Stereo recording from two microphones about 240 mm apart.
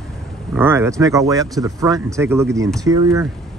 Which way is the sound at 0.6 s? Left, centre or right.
Centre.